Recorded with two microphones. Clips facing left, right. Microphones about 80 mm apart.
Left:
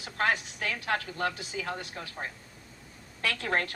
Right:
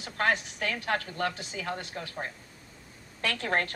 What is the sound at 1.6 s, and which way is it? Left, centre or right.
Speech, right.